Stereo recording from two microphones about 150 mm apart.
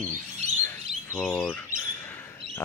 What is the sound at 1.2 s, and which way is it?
Speech, 5° left (ahead or behind).